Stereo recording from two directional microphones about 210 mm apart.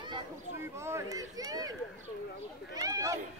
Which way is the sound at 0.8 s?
15° right (ahead or behind).